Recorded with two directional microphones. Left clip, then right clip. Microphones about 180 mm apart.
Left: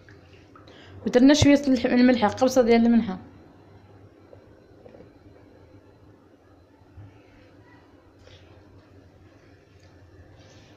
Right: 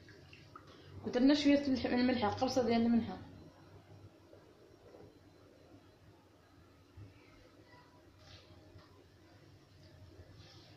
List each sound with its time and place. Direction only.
1.1 s speech: 55° left (ahead or behind)